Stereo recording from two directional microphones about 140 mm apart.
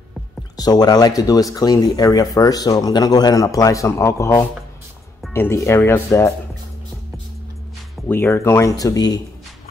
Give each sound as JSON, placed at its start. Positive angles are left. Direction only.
{"t": 0.6, "sound": "speech", "side_deg": 30}
{"t": 8.1, "sound": "speech", "side_deg": 15}